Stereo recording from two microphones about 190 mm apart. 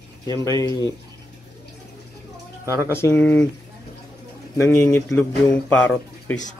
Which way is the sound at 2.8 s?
10° left (ahead or behind).